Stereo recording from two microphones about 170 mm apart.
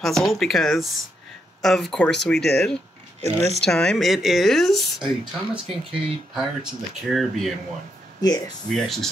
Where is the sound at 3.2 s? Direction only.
40° right (ahead or behind).